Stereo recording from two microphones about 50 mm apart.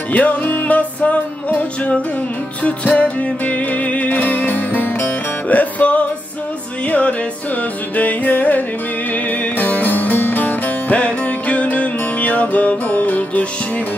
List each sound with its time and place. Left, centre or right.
0.1 s music: left
0.7 s music: left